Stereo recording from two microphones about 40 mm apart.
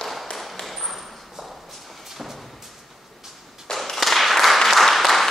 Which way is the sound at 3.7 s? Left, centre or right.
Centre.